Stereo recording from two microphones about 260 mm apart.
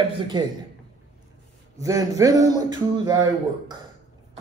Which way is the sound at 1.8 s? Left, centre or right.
Centre.